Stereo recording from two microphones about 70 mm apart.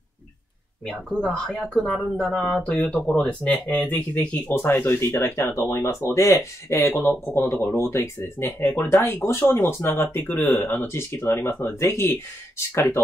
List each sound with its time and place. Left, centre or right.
0.8 s speech: centre; by 7.1 s left
7.5 s speech: left